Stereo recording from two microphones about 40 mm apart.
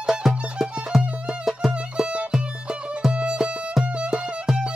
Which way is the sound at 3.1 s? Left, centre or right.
Right.